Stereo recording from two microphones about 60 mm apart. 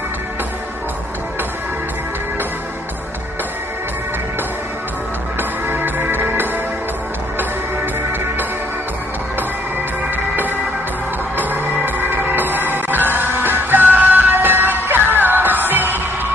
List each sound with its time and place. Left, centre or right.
5.4 s music: right
11.3 s music: right